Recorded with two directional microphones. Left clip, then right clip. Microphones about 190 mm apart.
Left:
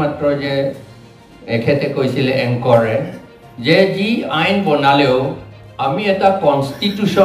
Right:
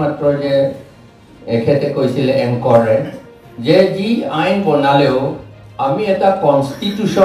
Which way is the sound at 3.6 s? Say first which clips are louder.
Right 1 dB; 35° right (ahead or behind).